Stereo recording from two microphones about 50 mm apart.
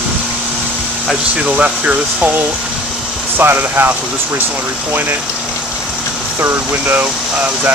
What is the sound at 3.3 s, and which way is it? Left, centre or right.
Speech, right.